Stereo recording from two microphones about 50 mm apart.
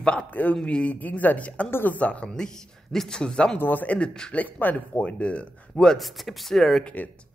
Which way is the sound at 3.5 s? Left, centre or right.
Left.